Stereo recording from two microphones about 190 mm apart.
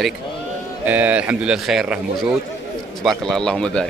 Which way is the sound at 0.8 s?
10° right (ahead or behind).